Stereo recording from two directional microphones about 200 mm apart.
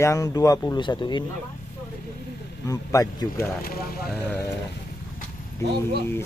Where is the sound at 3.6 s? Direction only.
50° left (ahead or behind).